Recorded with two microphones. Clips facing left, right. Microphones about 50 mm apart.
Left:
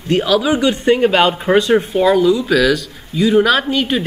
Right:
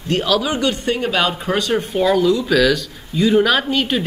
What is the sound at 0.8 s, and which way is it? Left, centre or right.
Speech, left.